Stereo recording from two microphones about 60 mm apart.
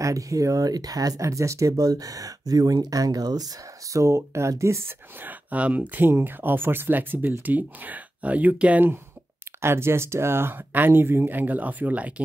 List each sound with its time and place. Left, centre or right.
0.0 s speech: right
3.9 s speech: right
5.2 s speech: right
9.6 s speech: right